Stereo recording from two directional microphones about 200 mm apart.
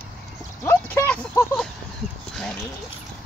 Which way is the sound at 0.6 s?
10° left (ahead or behind).